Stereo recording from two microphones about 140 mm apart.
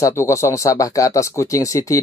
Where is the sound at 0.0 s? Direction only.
20° left (ahead or behind).